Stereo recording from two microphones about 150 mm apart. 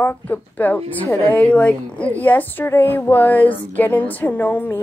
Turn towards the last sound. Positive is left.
turn(degrees=10)  # may be behind; listen again after turning